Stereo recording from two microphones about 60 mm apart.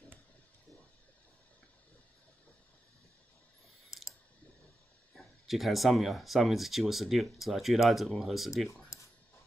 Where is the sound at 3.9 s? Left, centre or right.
Left.